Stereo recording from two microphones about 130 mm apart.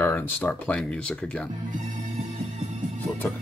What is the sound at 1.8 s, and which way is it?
Music, 60° right (ahead or behind).